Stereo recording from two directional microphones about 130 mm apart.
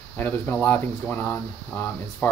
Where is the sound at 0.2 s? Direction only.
15° left (ahead or behind).